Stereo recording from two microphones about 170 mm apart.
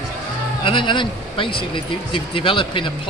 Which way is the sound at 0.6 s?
30° left (ahead or behind).